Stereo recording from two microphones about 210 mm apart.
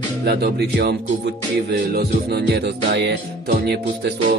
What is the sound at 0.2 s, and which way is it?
Music, 50° right (ahead or behind).